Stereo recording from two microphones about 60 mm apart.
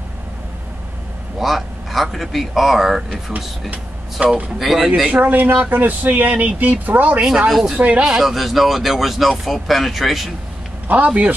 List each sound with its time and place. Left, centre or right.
1.4 s speech: centre
4.2 s speech: right
4.6 s speech: centre
5.2 s speech: right
7.4 s speech: centre
10.9 s speech: right